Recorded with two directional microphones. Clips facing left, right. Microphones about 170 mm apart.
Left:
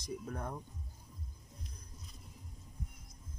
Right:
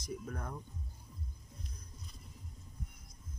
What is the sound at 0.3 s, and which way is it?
Speech, 25° left (ahead or behind).